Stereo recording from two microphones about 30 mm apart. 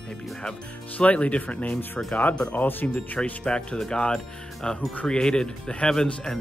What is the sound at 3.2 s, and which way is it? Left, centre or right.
Speech, left.